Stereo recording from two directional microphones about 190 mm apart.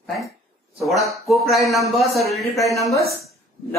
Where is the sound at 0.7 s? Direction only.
Centre (ahead or behind).